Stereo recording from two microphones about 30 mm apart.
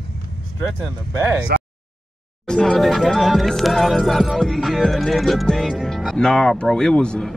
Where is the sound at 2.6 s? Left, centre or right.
Centre.